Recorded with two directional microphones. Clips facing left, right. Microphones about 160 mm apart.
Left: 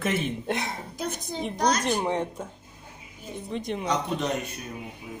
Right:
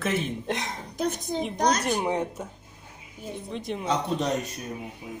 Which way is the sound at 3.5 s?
Centre (ahead or behind).